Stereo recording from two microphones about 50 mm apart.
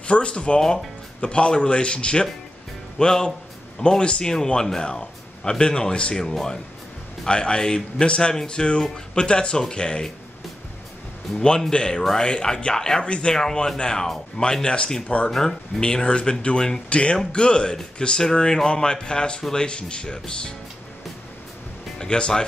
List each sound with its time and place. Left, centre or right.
0.0 s a man's voice: left
11.3 s a man's voice: centre
21.9 s speech: centre